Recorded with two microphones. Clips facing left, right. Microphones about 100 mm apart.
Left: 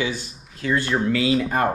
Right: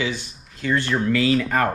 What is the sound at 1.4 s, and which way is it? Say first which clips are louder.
Speech: even; 90° right.